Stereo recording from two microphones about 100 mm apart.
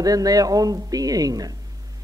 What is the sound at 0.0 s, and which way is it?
A man's voice, 40° right (ahead or behind).